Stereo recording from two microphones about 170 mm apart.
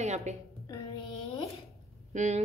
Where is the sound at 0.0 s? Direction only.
40° right (ahead or behind).